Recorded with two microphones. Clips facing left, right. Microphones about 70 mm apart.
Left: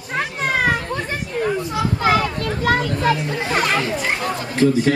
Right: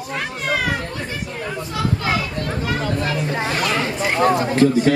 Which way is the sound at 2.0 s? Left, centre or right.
Left.